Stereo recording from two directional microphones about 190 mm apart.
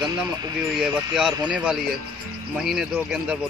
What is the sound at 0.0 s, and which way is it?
Speech, 20° right (ahead or behind).